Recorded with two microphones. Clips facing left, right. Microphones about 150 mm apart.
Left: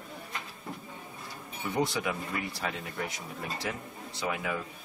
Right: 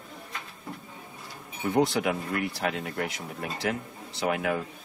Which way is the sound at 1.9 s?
65° right (ahead or behind).